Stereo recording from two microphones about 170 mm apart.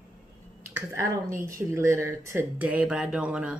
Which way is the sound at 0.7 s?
15° right (ahead or behind).